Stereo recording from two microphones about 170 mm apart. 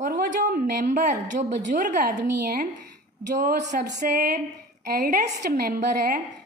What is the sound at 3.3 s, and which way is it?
A woman's voice, 45° right (ahead or behind).